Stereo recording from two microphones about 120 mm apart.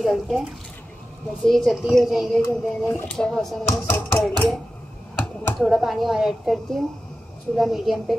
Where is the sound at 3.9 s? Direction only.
20° left (ahead or behind).